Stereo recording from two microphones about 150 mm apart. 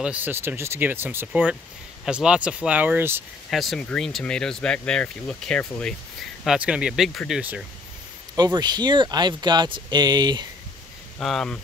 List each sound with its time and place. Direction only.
0.0 s speech: 10° right (ahead or behind)
3.4 s speech: centre (ahead or behind)
6.4 s speech: 5° right (ahead or behind)
8.4 s speech: 30° right (ahead or behind)
11.1 s speech: 5° left (ahead or behind)